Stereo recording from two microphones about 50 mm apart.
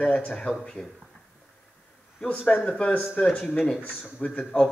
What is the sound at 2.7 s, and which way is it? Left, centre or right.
A man's voice, centre.